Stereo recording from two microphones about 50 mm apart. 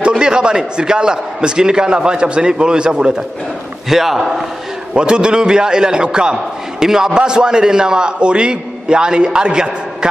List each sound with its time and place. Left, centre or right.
0.0 s a man's voice: centre
3.9 s a man's voice: centre
4.9 s a man's voice: centre